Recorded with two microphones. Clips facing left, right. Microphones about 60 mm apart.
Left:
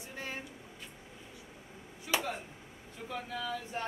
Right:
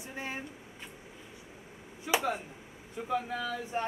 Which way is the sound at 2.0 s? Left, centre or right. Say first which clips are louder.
Right 4 dB; centre.